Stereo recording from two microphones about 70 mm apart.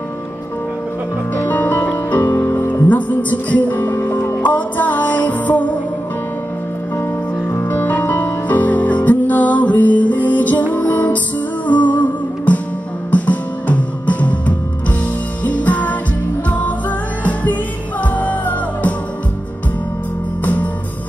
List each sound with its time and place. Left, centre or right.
1.3 s music: left
4.4 s music: left
7.4 s music: left
20.4 s music: left